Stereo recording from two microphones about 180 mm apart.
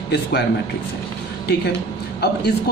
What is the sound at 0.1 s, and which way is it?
Speech, 65° left (ahead or behind).